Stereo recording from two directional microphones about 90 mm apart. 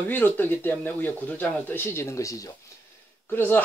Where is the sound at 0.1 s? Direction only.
20° left (ahead or behind); by 2.5 s 40° left (ahead or behind).